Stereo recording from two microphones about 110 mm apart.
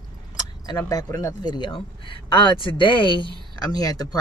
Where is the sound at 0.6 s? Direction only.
35° left (ahead or behind).